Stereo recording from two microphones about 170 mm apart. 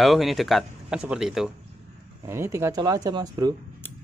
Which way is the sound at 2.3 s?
15° right (ahead or behind).